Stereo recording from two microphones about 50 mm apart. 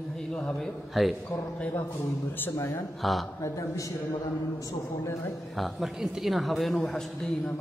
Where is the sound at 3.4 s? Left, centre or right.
Left.